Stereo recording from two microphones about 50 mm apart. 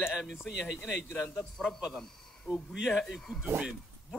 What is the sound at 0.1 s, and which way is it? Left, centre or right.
Speech, centre.